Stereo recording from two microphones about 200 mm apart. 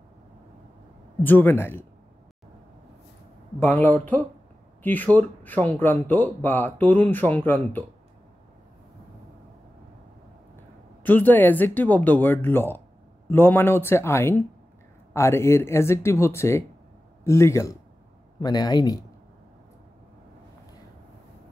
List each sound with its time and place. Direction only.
1.2 s speech: 10° left (ahead or behind)
3.5 s speech: 10° left (ahead or behind)
10.5 s speech: 10° left (ahead or behind)